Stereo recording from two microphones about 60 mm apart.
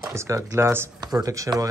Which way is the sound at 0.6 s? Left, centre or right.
Right.